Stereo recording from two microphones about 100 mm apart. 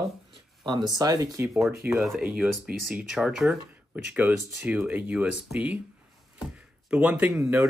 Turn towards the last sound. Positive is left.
turn(degrees=-30)  # may be behind; listen again after turning